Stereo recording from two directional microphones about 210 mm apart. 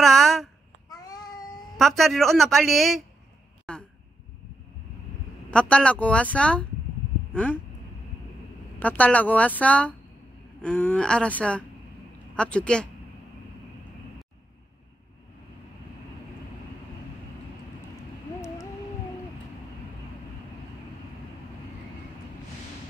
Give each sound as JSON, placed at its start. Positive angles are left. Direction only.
{"t": 0.0, "sound": "a sound", "side_deg": 0}
{"t": 0.8, "sound": "child singing", "side_deg": 20}
{"t": 1.8, "sound": "a woman's voice", "side_deg": 0}
{"t": 5.5, "sound": "a woman's voice", "side_deg": 5}
{"t": 8.7, "sound": "a woman's voice", "side_deg": 5}